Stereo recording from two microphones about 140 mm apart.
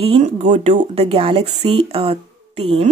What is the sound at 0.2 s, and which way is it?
Speech, 55° right (ahead or behind).